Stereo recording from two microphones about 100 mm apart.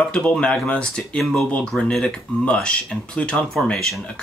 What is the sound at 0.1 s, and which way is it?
Speech, 10° left (ahead or behind).